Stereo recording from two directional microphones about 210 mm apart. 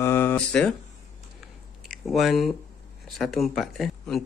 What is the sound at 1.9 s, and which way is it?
Speech, centre (ahead or behind).